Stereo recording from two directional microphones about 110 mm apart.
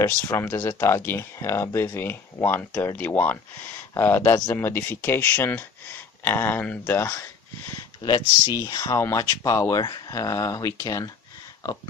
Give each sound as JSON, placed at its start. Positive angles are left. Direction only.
{"t": 0.0, "sound": "speech", "side_deg": 20}
{"t": 2.7, "sound": "speech", "side_deg": 30}
{"t": 3.0, "sound": "speech", "side_deg": 15}
{"t": 6.8, "sound": "speech", "side_deg": 25}
{"t": 8.0, "sound": "speech", "side_deg": 40}